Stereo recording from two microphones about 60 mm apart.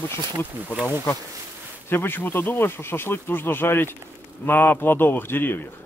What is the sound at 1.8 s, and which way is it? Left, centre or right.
Speech, left.